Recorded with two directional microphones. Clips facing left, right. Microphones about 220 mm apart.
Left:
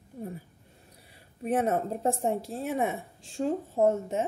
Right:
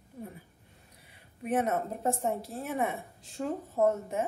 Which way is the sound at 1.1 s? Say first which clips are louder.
Left 2 dB; 30° left (ahead or behind).